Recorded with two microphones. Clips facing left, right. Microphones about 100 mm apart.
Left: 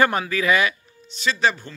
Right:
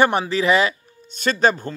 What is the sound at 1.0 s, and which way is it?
Speech, 50° right (ahead or behind).